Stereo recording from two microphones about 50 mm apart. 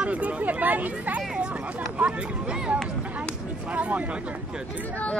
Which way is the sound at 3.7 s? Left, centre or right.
Right.